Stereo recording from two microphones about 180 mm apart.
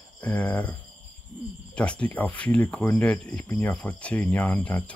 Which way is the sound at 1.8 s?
5° left (ahead or behind).